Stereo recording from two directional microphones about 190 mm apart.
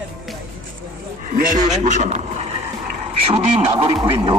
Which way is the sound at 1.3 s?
40° right (ahead or behind).